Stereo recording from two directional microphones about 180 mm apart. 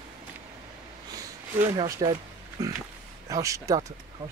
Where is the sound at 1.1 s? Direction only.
20° right (ahead or behind).